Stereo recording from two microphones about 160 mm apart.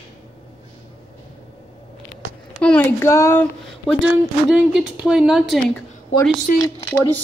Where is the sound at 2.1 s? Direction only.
5° left (ahead or behind).